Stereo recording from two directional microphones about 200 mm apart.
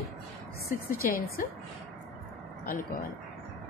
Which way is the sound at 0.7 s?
45° left (ahead or behind).